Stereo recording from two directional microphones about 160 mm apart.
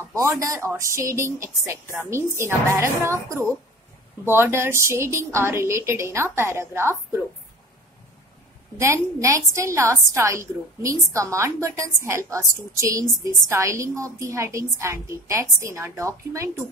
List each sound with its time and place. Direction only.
0.1 s speech: 20° right (ahead or behind)
8.7 s a woman's voice: 15° right (ahead or behind)